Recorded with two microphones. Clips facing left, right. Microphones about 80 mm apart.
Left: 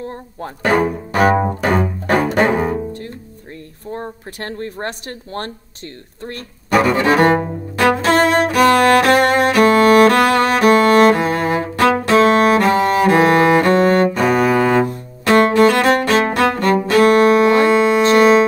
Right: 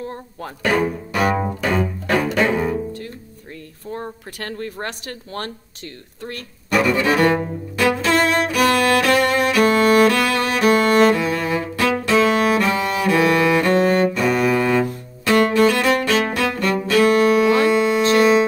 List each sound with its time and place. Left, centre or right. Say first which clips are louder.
0.0 s a woman's voice: left 2 dB; left
1.1 s bowed string instrument: left 6 dB; left
2.0 s double bass: left 4 dB; left
3.9 s a woman's voice: left 2 dB; left
7.8 s music: left 4 dB; left